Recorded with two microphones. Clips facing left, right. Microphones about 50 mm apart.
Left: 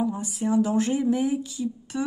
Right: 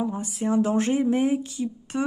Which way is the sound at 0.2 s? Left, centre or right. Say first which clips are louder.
Even; right.